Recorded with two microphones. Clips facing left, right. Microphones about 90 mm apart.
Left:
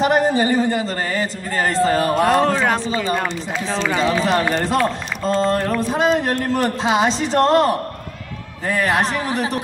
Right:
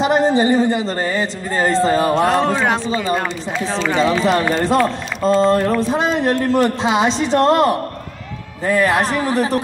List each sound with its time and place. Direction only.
0.0 s a man's voice: 25° right (ahead or behind)
2.1 s speech: centre (ahead or behind)
3.9 s speech: 35° right (ahead or behind)
8.6 s speech: 30° right (ahead or behind)